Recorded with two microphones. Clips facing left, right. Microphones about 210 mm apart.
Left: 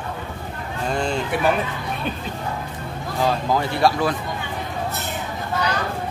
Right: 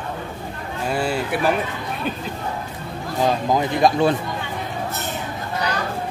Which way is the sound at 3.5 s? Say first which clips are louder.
Right 2 dB; 20° right (ahead or behind).